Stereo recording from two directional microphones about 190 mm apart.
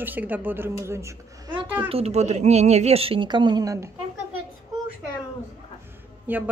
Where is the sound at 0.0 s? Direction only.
10° right (ahead or behind).